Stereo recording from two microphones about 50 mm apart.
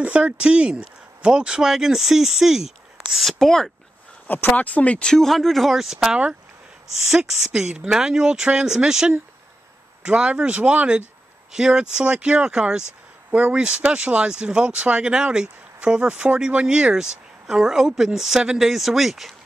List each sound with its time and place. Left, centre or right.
0.0 s speech: right; by 3.3 s centre
3.3 s speech: centre
4.5 s speech: left
5.0 s speech: centre
6.0 s speech: right
7.1 s speech: centre; by 11.1 s right
11.5 s speech: centre
13.3 s speech: right
13.6 s speech: centre